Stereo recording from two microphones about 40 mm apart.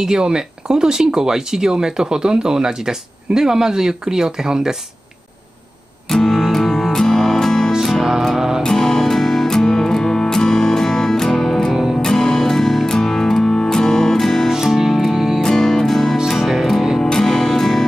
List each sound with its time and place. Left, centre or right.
0.0 s speech: centre
6.0 s music: centre
7.8 s music: centre
8.6 s music: centre
14.5 s music: centre
15.4 s music: centre
16.3 s music: centre
17.0 s music: centre